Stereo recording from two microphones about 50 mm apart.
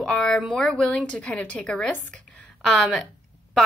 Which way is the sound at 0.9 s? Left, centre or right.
Left.